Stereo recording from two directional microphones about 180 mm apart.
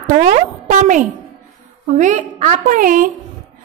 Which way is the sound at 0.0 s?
45° right (ahead or behind).